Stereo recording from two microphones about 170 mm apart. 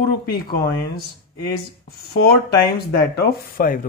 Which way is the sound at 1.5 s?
65° left (ahead or behind).